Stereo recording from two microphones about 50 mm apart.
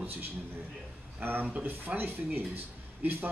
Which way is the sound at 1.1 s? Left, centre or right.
Right.